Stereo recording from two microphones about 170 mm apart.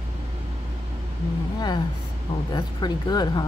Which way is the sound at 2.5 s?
25° left (ahead or behind).